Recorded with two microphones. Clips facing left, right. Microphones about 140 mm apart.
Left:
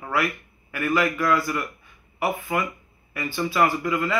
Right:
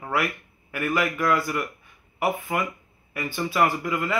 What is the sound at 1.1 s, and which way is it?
Speech, 25° right (ahead or behind).